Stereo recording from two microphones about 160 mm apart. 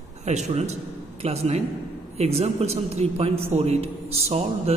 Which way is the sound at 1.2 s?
40° right (ahead or behind).